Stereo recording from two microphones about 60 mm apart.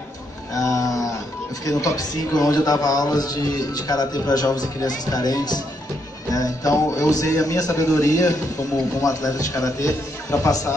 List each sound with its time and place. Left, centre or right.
0.6 s a sound: left
1.7 s a man's voice: left
6.3 s a man's voice: left